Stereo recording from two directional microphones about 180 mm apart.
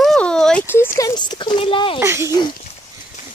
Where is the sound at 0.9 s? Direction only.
20° left (ahead or behind).